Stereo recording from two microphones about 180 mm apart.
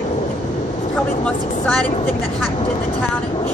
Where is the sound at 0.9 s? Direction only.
5° left (ahead or behind).